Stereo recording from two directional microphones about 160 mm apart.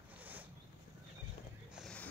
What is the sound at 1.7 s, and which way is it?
Boat, 5° left (ahead or behind).